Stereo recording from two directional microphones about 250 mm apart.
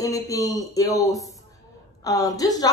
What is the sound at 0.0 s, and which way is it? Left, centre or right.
A woman's voice, centre.